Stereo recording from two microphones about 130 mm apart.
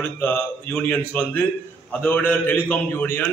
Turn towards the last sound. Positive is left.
turn(degrees=15)  # may be behind; listen again after turning